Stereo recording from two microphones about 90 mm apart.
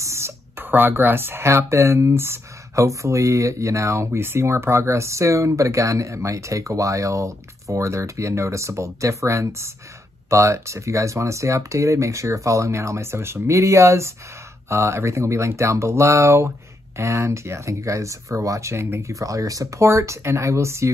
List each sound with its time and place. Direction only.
0.0 s speech: 30° right (ahead or behind)